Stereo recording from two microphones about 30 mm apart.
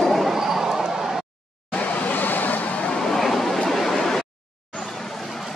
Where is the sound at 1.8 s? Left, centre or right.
Left.